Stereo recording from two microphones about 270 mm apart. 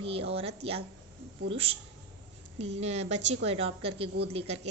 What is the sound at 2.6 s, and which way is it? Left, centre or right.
A woman's voice, right.